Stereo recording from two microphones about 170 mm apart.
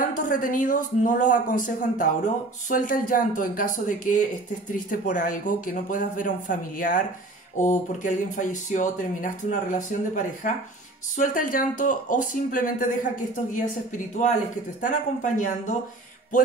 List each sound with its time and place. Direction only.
0.1 s speech: 50° left (ahead or behind)